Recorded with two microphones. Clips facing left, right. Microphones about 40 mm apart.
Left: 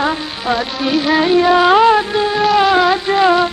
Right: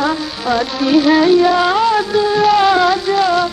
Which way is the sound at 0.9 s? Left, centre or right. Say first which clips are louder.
Right 3 dB; centre.